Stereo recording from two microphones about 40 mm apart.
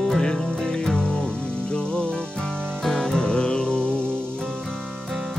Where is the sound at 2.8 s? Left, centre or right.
Centre.